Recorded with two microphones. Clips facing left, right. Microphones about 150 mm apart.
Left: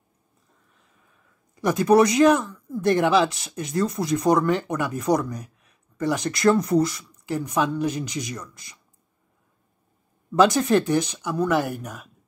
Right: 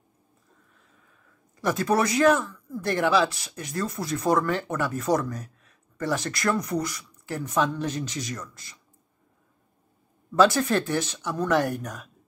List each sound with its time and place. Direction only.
1.5 s speech: 15° left (ahead or behind)
7.2 s speech: 15° left (ahead or behind)
10.3 s speech: 20° left (ahead or behind)